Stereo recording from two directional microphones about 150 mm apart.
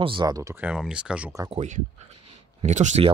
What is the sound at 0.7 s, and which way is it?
Speech, 5° right (ahead or behind).